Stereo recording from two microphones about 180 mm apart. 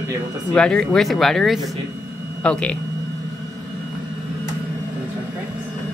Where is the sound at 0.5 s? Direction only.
5° left (ahead or behind).